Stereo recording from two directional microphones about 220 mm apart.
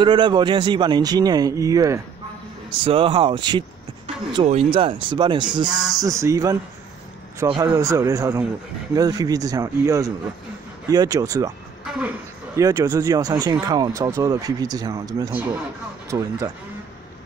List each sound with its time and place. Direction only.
0.0 s a man's voice: 20° right (ahead or behind)
12.5 s speech: 15° right (ahead or behind)